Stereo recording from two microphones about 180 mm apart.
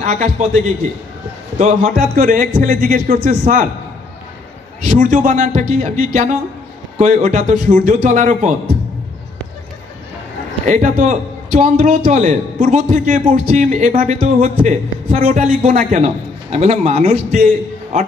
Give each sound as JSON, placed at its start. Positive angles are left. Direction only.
{"t": 0.0, "sound": "a man's voice", "side_deg": -40}
{"t": 4.8, "sound": "speech", "side_deg": -45}
{"t": 10.6, "sound": "a man's voice", "side_deg": -40}